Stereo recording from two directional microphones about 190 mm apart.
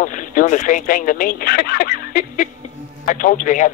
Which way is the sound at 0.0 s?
45° left (ahead or behind).